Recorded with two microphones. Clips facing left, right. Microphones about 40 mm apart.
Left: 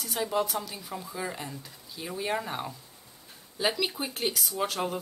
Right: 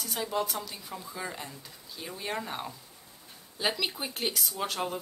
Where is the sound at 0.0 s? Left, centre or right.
Centre.